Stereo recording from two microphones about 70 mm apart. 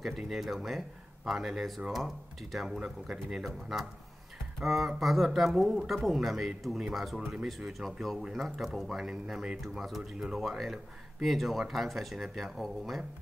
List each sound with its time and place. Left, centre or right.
0.3 s speech: centre
9.6 s speech: centre